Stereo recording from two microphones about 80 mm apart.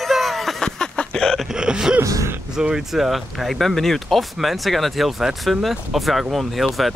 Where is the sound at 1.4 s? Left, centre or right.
Centre.